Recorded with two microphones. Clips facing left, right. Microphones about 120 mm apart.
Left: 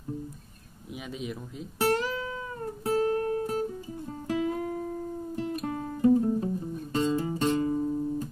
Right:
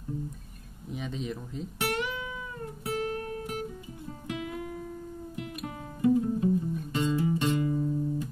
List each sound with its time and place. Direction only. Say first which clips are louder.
0.9 s speech: right 1 dB; 5° left (ahead or behind)
1.8 s music: left 6 dB; 35° left (ahead or behind)